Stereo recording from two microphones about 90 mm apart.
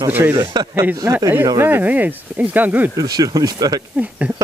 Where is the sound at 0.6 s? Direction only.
45° right (ahead or behind).